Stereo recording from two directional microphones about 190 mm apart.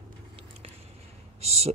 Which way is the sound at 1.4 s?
35° right (ahead or behind).